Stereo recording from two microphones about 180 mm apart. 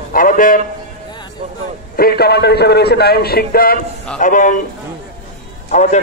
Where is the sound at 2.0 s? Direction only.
60° left (ahead or behind).